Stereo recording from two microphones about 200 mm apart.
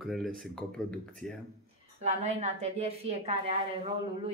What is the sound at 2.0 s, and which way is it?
A woman's voice, 35° right (ahead or behind).